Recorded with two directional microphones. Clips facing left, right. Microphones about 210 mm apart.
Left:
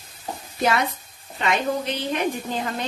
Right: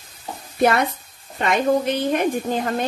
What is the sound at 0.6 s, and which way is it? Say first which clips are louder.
A woman's voice: right 4 dB; 55° right (ahead or behind).